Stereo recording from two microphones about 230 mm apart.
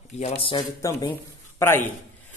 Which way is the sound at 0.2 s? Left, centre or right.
Left.